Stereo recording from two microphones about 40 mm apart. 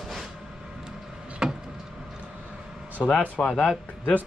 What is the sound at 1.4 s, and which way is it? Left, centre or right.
Vehicle, centre.